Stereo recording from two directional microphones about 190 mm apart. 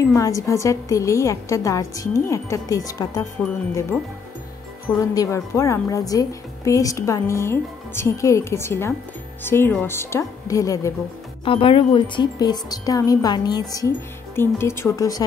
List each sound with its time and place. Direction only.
0.1 s a woman's voice: 15° left (ahead or behind)
4.9 s a woman's voice: 15° left (ahead or behind)
11.4 s speech: 25° left (ahead or behind)